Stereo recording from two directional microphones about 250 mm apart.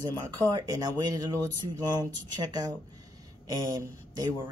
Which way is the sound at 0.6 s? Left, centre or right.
Centre.